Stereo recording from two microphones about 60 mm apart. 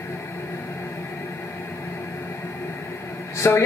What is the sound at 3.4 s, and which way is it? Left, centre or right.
Speech, left.